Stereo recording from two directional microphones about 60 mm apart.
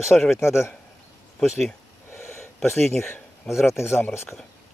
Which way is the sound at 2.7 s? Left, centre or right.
Centre.